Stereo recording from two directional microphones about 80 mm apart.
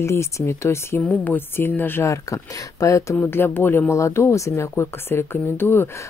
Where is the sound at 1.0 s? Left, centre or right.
Left.